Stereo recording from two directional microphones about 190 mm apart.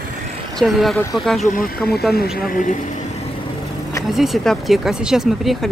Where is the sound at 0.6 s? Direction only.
Centre (ahead or behind).